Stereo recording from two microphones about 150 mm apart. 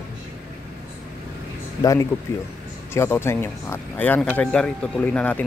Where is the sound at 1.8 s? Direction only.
20° left (ahead or behind).